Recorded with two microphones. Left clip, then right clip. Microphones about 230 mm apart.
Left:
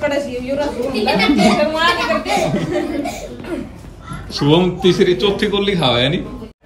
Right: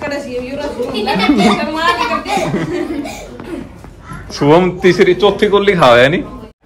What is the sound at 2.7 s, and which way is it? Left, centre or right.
Chuckle, centre.